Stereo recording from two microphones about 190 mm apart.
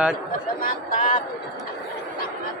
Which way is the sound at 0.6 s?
40° left (ahead or behind).